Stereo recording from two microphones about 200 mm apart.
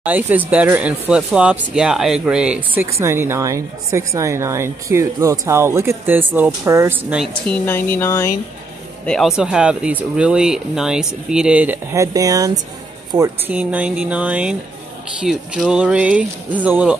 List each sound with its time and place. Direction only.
0.0 s speech: 10° right (ahead or behind)
7.5 s speech: 10° left (ahead or behind)
9.0 s speech: centre (ahead or behind); by 13.3 s 20° right (ahead or behind)
13.5 s speech: 5° right (ahead or behind)